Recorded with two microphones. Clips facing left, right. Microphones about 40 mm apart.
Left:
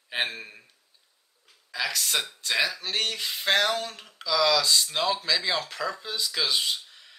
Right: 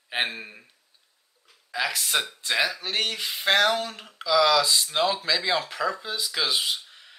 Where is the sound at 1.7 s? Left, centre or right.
Centre.